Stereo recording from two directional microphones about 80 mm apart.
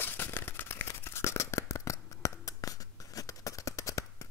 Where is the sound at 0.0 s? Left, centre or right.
Left.